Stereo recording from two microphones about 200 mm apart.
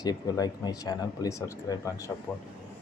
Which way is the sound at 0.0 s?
20° left (ahead or behind).